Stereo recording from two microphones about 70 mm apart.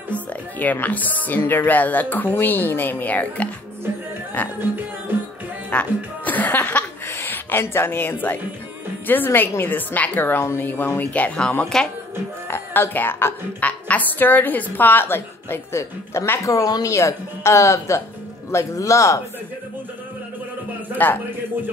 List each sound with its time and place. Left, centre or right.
0.1 s speech: left
4.6 s music: right
5.7 s speech: left
7.1 s a woman's voice: left
11.7 s a woman's voice: centre
12.4 s a woman's voice: left